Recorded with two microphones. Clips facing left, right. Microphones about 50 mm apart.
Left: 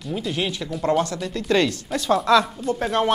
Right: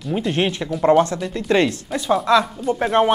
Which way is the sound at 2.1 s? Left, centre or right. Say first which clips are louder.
Right 1 dB; centre.